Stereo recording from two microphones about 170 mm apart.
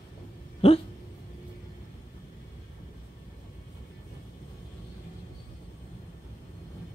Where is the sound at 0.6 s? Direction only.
35° left (ahead or behind).